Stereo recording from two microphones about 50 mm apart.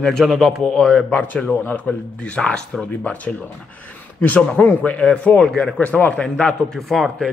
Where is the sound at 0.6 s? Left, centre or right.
Centre.